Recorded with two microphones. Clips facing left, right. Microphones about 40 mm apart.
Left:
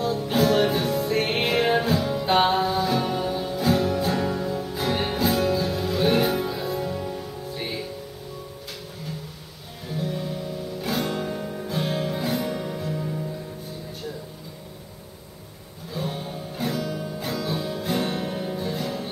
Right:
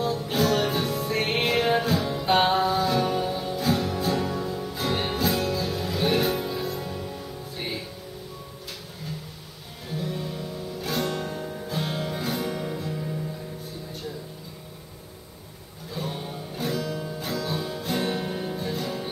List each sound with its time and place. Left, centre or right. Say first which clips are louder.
0.0 s music: left 2 dB; centre
1.9 s music: left 1 dB; centre
9.8 s music: left 2 dB; centre
15.9 s music: left 2 dB; centre